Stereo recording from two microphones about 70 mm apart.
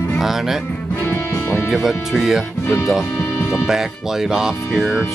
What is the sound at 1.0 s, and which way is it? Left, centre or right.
Music, left.